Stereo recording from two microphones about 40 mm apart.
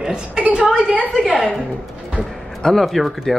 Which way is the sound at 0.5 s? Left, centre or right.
Right.